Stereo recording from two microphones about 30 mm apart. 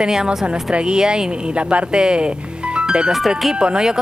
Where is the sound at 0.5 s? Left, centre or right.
Right.